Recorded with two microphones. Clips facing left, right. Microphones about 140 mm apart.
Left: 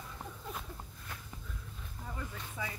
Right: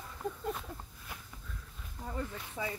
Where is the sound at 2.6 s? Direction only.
30° right (ahead or behind).